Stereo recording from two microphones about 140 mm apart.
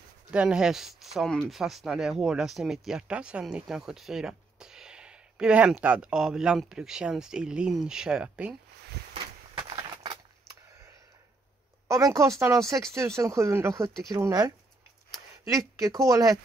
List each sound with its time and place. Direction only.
0.3 s speech: 5° right (ahead or behind)
11.9 s speech: 20° right (ahead or behind)